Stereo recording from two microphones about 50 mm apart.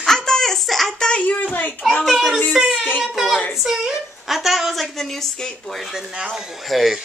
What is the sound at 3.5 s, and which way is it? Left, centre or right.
A man's voice, centre.